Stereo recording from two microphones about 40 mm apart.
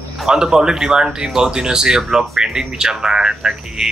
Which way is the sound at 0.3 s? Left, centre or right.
Centre.